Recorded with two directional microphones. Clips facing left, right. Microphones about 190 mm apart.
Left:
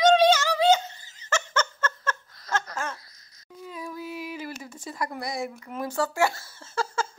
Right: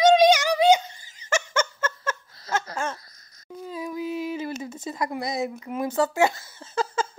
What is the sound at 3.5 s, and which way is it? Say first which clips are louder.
Child singing: right 5 dB; 55° right (ahead or behind).